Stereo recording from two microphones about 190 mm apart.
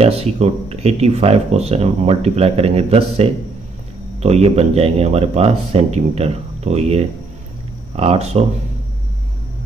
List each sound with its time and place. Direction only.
0.0 s speech: 35° right (ahead or behind)